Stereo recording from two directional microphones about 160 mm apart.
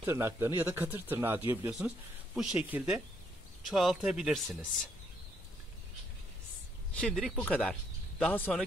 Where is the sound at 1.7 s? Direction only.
Centre (ahead or behind).